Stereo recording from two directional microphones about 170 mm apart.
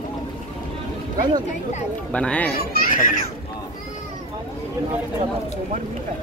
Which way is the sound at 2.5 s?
60° left (ahead or behind).